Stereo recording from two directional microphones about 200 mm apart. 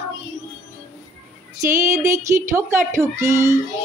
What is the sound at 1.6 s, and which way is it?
Child singing, 15° right (ahead or behind).